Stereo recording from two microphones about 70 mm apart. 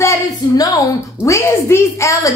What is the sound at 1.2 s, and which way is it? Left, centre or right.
A woman's voice, left.